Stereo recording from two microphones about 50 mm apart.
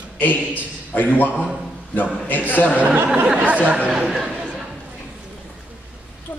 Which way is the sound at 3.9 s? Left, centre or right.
Centre.